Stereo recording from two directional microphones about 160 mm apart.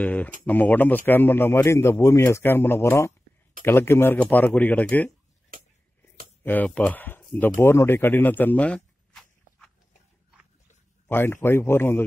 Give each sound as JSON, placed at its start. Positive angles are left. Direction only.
{"t": 0.0, "sound": "speech", "side_deg": 10}
{"t": 5.5, "sound": "a sound", "side_deg": -60}
{"t": 6.4, "sound": "speech", "side_deg": 10}
{"t": 11.1, "sound": "speech", "side_deg": 15}